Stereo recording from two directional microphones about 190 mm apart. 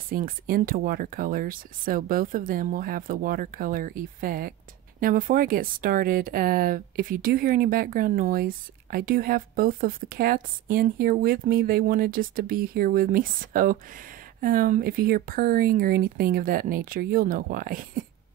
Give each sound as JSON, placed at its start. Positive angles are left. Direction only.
{"t": 0.1, "sound": "speech", "side_deg": -50}